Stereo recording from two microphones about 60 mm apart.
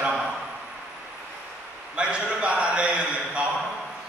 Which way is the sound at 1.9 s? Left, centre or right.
Centre.